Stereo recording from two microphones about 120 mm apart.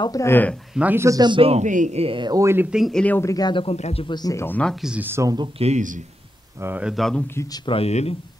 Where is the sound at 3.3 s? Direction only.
40° left (ahead or behind).